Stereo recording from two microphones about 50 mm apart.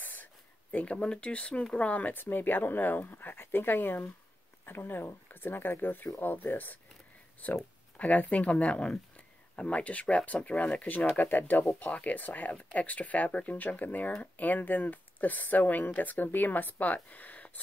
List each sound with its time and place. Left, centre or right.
0.0 s speech: left